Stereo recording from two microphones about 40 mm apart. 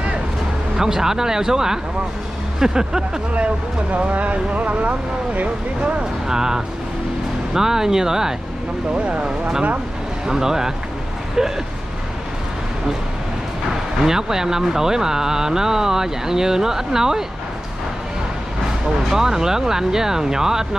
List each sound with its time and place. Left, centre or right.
0.7 s speech: centre
3.9 s speech: right
6.2 s speech: centre
8.9 s speech: right
10.2 s speech: centre
14.0 s speech: centre
19.0 s speech: centre